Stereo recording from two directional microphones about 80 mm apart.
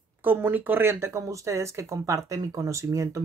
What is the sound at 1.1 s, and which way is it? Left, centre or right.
Speech, right.